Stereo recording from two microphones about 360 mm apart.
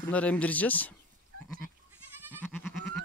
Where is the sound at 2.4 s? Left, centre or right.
Centre.